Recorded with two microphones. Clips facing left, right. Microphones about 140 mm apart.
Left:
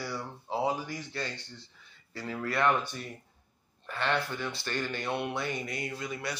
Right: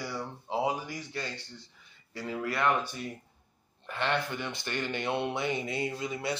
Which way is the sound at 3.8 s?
20° right (ahead or behind).